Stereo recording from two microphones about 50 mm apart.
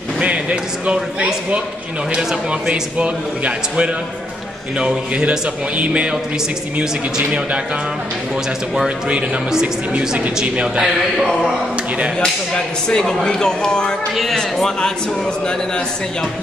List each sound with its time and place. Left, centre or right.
0.2 s speech: right
2.7 s speech: right
8.8 s speech: centre
11.0 s a sound: centre
12.2 s speech: centre